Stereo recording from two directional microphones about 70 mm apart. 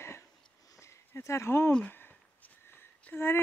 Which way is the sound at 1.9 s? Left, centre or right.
Left.